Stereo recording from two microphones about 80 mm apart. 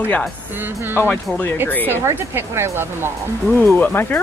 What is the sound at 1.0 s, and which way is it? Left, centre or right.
Speech, centre.